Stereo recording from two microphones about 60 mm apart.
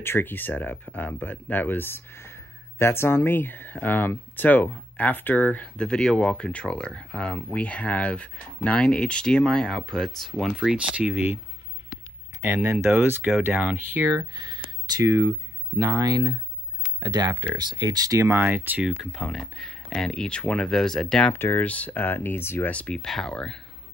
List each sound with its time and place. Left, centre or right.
0.0 s speech: left
5.8 s speech: centre
10.6 s speech: centre
12.4 s speech: right
15.8 s speech: right
18.3 s speech: right
19.1 s speech: centre
21.3 s speech: left
21.6 s speech: left
22.7 s speech: centre